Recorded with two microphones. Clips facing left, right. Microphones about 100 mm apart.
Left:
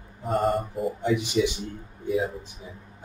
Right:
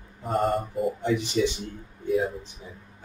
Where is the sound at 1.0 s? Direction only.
15° left (ahead or behind).